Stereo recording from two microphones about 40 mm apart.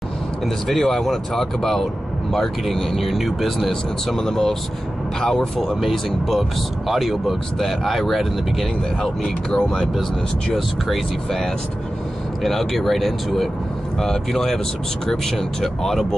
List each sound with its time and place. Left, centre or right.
0.7 s speech: centre
9.5 s speech: centre
10.5 s speech: centre
12.4 s speech: centre